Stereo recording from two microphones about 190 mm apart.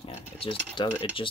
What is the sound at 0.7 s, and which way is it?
Speech, 25° left (ahead or behind).